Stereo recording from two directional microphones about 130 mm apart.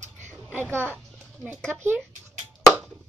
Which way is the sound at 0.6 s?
20° right (ahead or behind).